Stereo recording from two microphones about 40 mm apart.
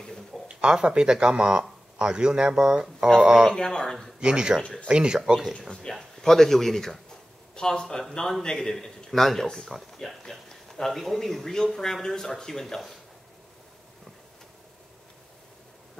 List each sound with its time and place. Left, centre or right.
0.0 s a sound: centre
0.7 s speech: right
3.5 s speech: left
4.2 s speech: right
5.2 s speech: centre
5.7 s speech: centre
5.9 s speech: centre
7.5 s speech: centre